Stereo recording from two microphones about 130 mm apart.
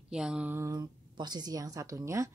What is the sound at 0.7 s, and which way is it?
Speech, 35° right (ahead or behind).